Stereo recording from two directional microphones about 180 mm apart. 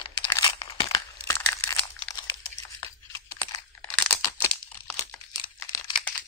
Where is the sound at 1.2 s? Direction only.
20° left (ahead or behind).